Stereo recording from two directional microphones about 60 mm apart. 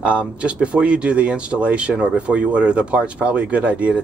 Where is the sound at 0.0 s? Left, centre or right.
Centre.